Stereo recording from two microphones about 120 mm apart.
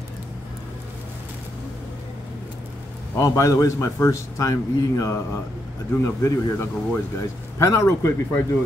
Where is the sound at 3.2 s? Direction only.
30° left (ahead or behind).